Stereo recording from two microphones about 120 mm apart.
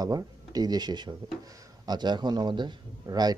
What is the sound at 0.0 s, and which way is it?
Speech, 35° right (ahead or behind).